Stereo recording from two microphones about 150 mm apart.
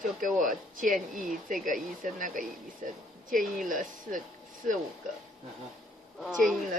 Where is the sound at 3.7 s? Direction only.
60° right (ahead or behind).